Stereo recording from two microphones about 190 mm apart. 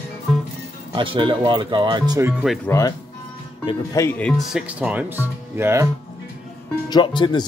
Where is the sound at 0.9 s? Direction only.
25° right (ahead or behind).